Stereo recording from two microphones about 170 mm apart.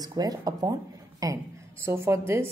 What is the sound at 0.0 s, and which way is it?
A woman's voice, 20° right (ahead or behind).